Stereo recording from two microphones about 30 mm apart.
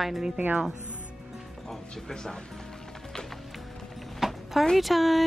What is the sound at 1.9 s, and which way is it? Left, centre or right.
Speech, left.